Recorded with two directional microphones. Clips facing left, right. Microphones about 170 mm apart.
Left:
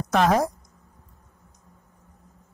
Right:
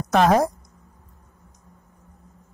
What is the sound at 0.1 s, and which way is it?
Speech, 40° right (ahead or behind).